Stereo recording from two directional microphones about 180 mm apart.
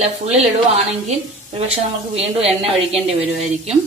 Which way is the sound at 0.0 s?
35° right (ahead or behind).